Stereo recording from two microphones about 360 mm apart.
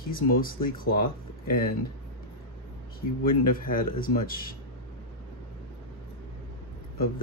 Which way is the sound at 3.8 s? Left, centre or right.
Left.